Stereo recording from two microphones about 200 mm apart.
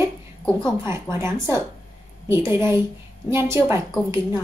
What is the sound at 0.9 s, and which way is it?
A woman's voice, 15° right (ahead or behind).